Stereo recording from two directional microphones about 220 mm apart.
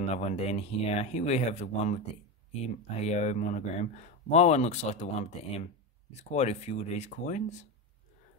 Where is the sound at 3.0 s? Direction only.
30° left (ahead or behind).